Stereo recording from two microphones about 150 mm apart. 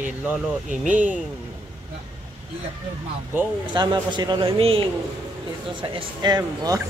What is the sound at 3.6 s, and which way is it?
A man's voice, 30° right (ahead or behind).